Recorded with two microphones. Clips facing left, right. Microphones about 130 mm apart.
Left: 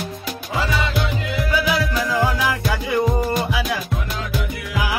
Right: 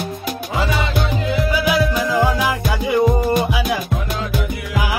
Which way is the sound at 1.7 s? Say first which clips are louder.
Right 4 dB; 15° right (ahead or behind).